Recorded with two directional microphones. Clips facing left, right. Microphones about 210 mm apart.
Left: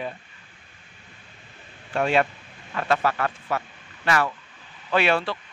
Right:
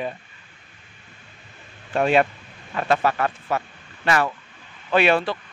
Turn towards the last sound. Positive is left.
turn(degrees=-15)  # may be behind; listen again after turning